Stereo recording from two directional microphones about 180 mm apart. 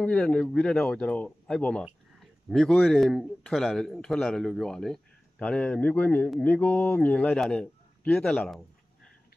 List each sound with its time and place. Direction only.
0.0 s a man's voice: 5° left (ahead or behind)